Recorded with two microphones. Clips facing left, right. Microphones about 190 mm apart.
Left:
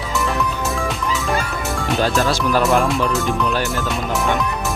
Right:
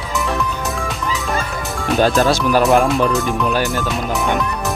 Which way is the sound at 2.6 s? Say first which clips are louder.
Right 3 dB; 15° right (ahead or behind).